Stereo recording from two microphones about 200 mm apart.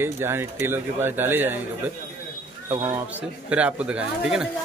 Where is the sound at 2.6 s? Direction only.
15° right (ahead or behind).